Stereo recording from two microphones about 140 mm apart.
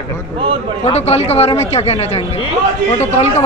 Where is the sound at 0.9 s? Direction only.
50° left (ahead or behind).